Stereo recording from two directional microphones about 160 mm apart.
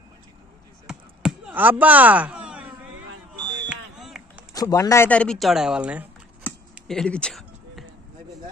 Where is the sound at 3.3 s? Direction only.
30° right (ahead or behind).